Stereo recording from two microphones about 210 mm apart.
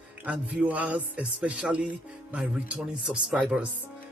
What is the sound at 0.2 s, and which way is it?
A man's voice, 5° right (ahead or behind).